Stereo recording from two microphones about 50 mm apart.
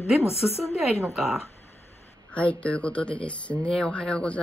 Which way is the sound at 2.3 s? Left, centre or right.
Left.